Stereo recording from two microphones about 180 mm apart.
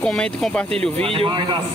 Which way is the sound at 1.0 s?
30° right (ahead or behind).